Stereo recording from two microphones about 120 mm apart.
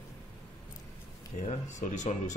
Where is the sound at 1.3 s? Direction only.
90° left.